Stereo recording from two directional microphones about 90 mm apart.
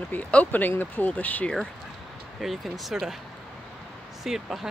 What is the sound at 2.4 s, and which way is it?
Speech, centre (ahead or behind).